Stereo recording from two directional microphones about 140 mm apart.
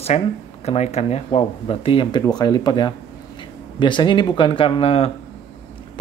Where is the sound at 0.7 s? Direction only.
50° left (ahead or behind).